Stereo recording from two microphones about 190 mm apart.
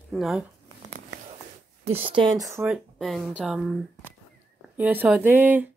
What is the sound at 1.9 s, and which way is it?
Speech, 30° right (ahead or behind).